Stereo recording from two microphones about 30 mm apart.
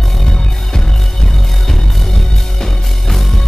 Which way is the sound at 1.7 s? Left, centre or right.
Centre.